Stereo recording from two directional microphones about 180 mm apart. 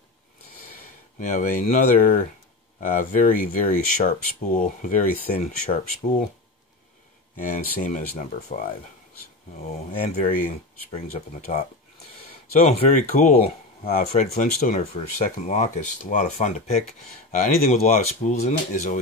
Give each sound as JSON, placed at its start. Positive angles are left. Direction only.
{"t": 1.2, "sound": "speech", "side_deg": 50}
{"t": 7.3, "sound": "speech", "side_deg": 45}
{"t": 9.7, "sound": "speech", "side_deg": 45}
{"t": 10.9, "sound": "speech", "side_deg": 40}